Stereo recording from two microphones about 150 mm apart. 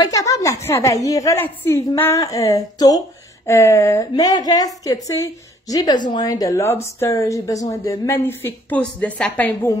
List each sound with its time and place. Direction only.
0.0 s speech: 20° left (ahead or behind)